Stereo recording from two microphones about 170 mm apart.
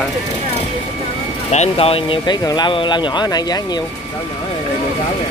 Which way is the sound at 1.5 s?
40° left (ahead or behind).